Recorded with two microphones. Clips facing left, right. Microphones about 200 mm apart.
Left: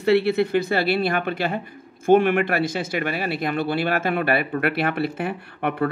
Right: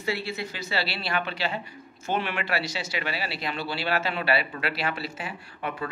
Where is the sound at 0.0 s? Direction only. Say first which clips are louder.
Left 13 dB; 65° left (ahead or behind).